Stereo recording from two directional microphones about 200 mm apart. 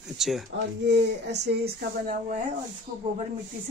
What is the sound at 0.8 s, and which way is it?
Speech, 60° right (ahead or behind).